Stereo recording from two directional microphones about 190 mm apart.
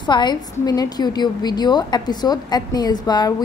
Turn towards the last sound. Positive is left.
turn(degrees=20)  # may be behind; listen again after turning